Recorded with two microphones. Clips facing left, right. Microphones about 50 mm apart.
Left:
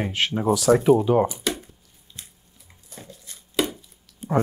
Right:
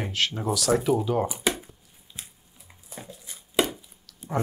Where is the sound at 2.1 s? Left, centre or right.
Centre.